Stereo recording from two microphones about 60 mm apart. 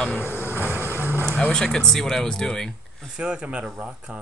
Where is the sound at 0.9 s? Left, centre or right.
Right.